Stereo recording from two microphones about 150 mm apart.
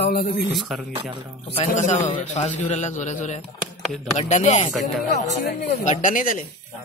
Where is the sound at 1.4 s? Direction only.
45° left (ahead or behind); by 6.5 s 65° left (ahead or behind).